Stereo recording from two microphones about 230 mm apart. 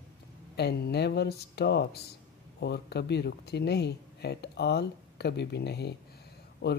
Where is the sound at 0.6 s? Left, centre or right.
Left.